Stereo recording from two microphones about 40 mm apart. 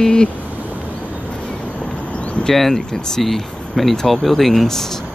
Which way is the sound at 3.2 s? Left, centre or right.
Centre.